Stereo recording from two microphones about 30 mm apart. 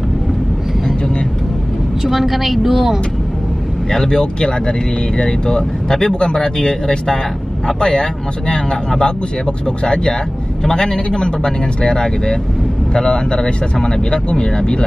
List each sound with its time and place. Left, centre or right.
2.0 s a woman's voice: centre
3.9 s speech: left
10.7 s speech: left